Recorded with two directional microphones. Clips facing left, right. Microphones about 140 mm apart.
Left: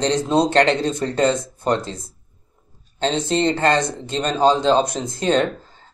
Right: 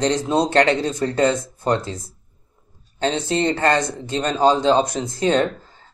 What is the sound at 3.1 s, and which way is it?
Speech, 20° left (ahead or behind).